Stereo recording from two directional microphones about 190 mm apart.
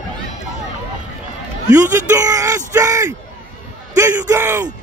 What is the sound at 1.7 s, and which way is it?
Speech, 15° right (ahead or behind).